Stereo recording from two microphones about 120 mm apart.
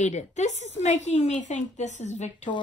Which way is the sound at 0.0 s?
75° left (ahead or behind).